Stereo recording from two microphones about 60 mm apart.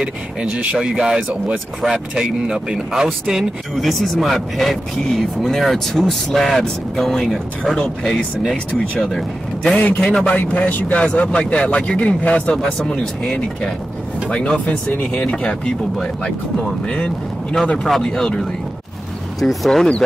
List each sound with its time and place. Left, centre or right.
0.0 s speech: centre
9.1 s speech: centre
9.8 s speech: left
14.9 s speech: left
15.3 s speech: centre
19.4 s speech: centre